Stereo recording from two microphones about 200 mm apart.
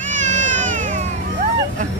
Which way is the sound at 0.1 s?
40° right (ahead or behind).